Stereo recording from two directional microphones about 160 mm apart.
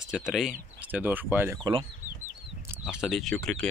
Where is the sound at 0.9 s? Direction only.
10° right (ahead or behind).